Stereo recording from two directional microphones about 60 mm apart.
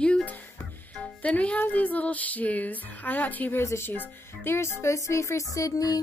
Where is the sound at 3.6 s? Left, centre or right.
Left.